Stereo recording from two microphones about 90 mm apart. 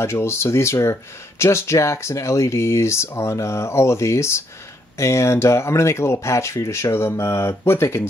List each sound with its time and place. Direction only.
0.0 s speech: 30° left (ahead or behind)